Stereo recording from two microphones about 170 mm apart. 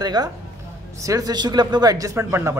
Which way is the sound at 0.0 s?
25° right (ahead or behind).